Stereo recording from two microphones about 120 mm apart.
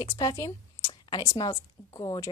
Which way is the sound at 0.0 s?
25° left (ahead or behind).